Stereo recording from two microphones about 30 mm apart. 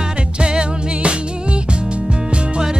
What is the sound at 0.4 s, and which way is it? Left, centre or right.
Music, right.